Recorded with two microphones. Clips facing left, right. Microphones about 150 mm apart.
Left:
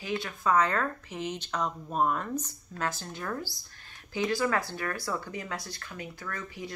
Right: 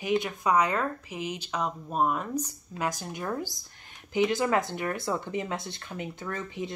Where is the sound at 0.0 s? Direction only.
20° right (ahead or behind).